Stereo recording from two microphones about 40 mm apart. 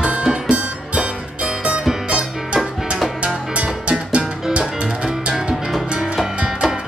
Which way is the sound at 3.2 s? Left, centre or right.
Right.